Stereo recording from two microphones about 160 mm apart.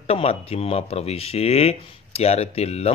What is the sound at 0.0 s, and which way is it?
Speech, 40° left (ahead or behind).